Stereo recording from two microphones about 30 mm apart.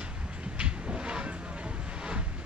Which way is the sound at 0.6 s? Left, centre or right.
Right.